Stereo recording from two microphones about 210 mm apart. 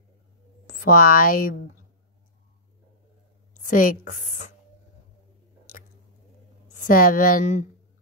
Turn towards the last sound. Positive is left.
turn(degrees=40)  # may be behind; listen again after turning